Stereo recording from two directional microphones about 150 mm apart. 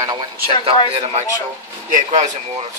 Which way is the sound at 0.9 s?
40° right (ahead or behind).